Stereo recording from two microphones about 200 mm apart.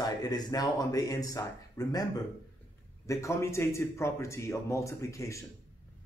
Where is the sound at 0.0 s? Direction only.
20° left (ahead or behind).